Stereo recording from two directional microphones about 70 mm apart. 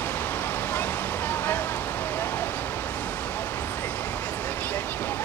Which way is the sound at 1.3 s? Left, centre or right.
Left.